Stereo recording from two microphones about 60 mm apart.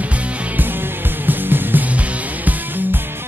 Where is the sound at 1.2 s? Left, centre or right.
Right.